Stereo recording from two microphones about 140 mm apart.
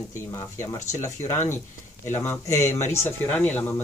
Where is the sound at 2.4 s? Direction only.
55° left (ahead or behind).